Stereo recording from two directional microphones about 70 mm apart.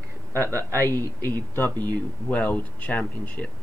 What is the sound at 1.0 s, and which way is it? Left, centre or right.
Speech, left.